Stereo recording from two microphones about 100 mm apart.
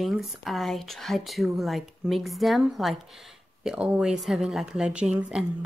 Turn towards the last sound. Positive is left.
turn(degrees=-10)  # may be behind; listen again after turning